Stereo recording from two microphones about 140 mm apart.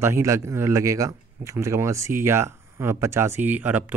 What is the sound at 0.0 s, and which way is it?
Speech, 20° right (ahead or behind).